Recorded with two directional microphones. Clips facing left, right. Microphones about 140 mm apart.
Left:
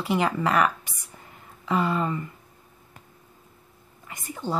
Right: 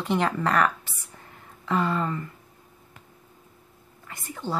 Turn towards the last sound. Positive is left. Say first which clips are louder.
# left 1 dB
turn(degrees=15)  # may be behind; listen again after turning